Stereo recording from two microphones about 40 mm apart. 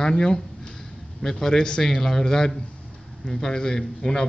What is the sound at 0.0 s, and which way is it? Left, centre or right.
A man's voice, centre.